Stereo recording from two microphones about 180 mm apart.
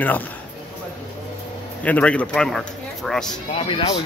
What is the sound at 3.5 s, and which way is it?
Speech, 30° left (ahead or behind).